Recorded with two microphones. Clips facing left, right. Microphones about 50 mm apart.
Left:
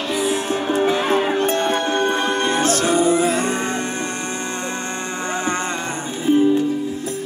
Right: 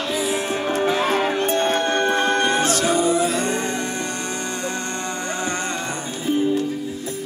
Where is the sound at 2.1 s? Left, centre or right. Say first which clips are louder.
Right 1 dB; right.